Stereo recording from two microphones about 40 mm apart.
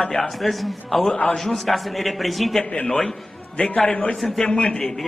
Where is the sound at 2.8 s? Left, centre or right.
Centre.